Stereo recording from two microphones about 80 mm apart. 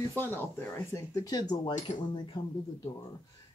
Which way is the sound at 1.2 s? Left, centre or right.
Left.